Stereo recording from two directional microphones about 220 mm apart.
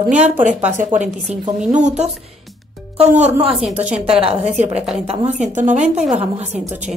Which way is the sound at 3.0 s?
30° right (ahead or behind).